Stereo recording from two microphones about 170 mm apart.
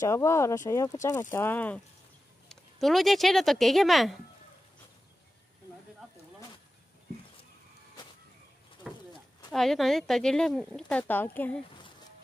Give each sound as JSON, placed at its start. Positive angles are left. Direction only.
{"t": 0.0, "sound": "speech", "side_deg": 15}
{"t": 8.8, "sound": "a sound", "side_deg": -5}
{"t": 9.5, "sound": "speech", "side_deg": 0}